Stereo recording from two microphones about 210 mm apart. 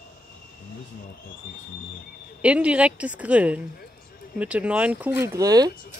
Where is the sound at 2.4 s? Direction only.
5° right (ahead or behind).